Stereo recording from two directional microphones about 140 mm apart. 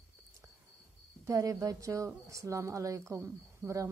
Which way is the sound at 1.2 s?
25° right (ahead or behind).